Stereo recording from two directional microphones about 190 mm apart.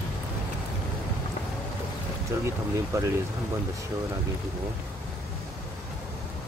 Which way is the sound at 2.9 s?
15° right (ahead or behind).